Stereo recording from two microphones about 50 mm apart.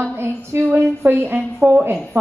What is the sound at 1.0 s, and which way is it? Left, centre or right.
Speech, right.